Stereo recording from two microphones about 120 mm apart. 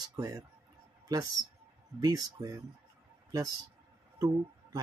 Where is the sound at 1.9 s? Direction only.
30° right (ahead or behind).